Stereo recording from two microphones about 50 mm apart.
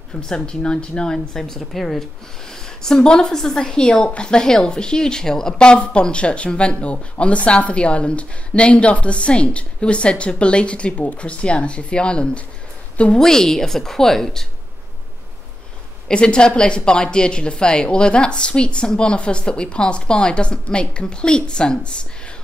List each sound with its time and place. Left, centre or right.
0.1 s a woman's voice: centre
13.2 s speech: centre
16.1 s a woman's voice: centre